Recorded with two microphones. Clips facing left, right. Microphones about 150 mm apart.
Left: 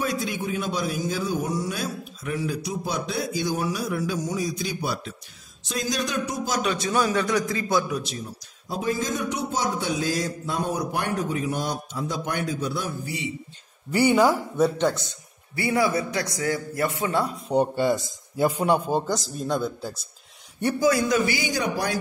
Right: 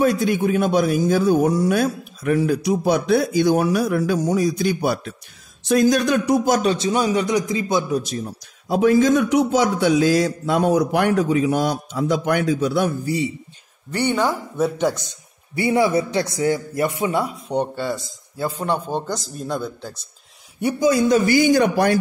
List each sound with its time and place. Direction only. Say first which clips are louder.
0.0 s a man's voice: right 9 dB; 55° right (ahead or behind)
6.6 s speech: right 6 dB; 30° right (ahead or behind)
6.9 s a man's voice: even; 20° right (ahead or behind)
7.9 s speech: right 7 dB; 45° right (ahead or behind)
8.6 s a man's voice: right 11 dB; 70° right (ahead or behind)
13.0 s speech: right 9 dB; 40° right (ahead or behind)
13.9 s speech: left 2 dB; 5° left (ahead or behind)
14.8 s a man's voice: right 2 dB; 10° right (ahead or behind)
17.7 s a man's voice: left 3 dB; 15° left (ahead or behind); by 19.9 s centre (ahead or behind)
20.6 s a man's voice: right 3 dB; 20° right (ahead or behind)
21.3 s a man's voice: right 11 dB; 55° right (ahead or behind)